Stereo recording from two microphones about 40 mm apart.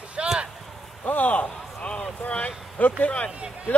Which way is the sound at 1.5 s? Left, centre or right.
Left.